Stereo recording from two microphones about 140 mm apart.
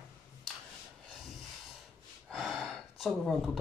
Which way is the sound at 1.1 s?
Centre (ahead or behind).